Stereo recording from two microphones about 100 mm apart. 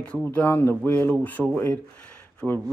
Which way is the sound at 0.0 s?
15° left (ahead or behind).